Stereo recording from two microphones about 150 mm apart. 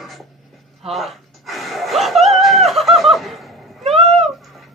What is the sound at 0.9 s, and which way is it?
Gasp, centre (ahead or behind).